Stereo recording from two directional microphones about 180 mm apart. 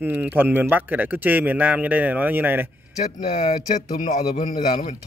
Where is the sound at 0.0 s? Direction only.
10° right (ahead or behind).